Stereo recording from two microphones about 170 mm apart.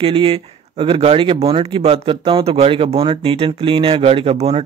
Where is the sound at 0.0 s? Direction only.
30° right (ahead or behind).